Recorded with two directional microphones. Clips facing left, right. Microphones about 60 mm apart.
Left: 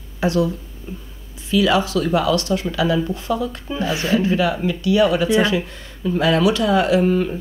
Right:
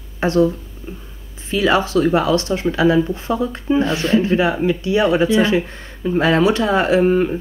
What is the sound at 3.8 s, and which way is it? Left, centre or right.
Speech, centre.